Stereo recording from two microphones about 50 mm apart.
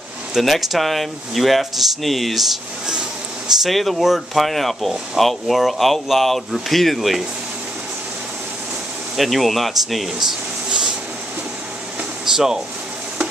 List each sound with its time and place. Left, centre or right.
0.4 s speech: centre
9.1 s speech: centre
10.2 s a sound: centre
12.3 s speech: centre